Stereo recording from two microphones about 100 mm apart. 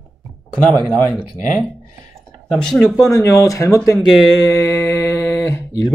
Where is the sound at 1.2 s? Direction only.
5° left (ahead or behind).